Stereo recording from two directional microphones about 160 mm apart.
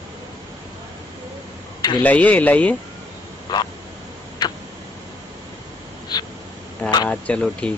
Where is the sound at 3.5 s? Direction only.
25° left (ahead or behind).